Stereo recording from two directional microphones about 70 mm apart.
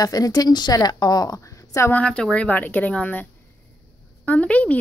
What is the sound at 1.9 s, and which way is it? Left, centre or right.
Speech, centre.